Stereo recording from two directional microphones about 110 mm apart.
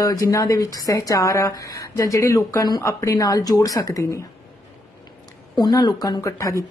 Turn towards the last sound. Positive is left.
turn(degrees=25)  # may be behind; listen again after turning